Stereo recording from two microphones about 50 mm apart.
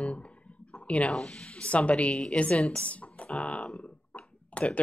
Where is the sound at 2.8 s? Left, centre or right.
Left.